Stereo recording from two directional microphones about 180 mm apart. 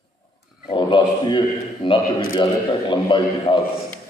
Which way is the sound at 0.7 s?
25° left (ahead or behind).